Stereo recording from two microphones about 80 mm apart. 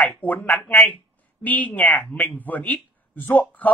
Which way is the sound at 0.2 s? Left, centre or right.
Left.